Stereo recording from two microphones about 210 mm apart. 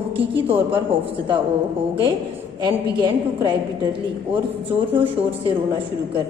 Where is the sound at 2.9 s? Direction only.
20° right (ahead or behind).